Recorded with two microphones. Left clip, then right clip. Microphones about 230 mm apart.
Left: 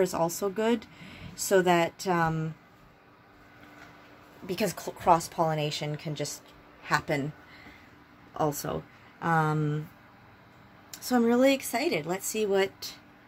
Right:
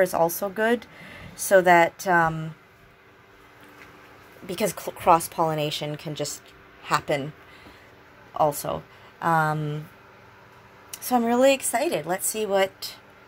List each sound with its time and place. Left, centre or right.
0.0 s speech: centre
4.5 s speech: centre
8.6 s speech: centre
11.1 s speech: centre